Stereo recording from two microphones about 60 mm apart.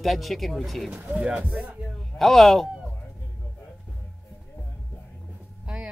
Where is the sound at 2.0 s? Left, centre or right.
Centre.